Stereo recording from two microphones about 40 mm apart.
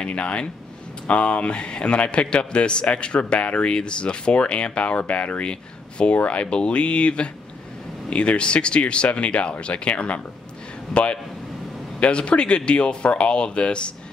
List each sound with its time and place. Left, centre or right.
0.0 s a man's voice: left